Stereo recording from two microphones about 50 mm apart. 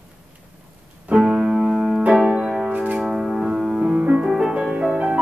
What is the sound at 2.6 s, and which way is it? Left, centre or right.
Music, right.